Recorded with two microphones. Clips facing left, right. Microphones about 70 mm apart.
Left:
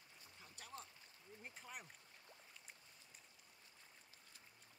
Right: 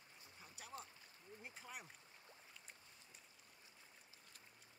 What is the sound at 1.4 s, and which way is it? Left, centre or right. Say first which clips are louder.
Speech: even; centre.